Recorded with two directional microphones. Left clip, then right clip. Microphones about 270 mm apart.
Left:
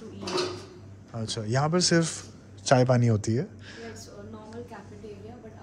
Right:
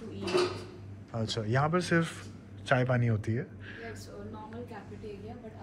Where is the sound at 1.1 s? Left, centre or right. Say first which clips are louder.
Left 1 dB; centre.